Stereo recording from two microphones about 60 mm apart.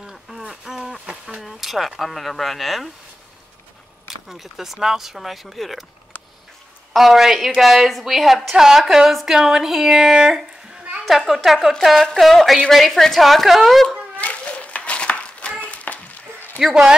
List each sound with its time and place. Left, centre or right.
0.0 s a sound: centre
1.4 s speech: centre
4.1 s a woman's voice: centre
6.9 s a woman's voice: centre
14.2 s a sound: left
16.5 s speech: centre